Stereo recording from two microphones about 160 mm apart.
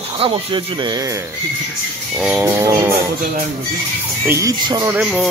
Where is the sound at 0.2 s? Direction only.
30° right (ahead or behind).